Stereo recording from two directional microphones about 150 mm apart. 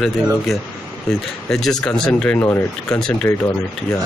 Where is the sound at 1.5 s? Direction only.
5° left (ahead or behind).